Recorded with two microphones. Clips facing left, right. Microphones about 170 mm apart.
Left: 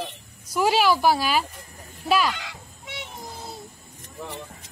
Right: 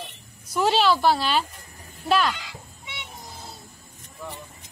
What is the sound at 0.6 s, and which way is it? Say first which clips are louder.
A woman's voice: even; 10° left (ahead or behind).